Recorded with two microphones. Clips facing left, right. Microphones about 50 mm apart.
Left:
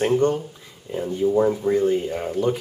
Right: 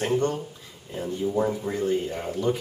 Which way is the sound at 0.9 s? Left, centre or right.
Centre.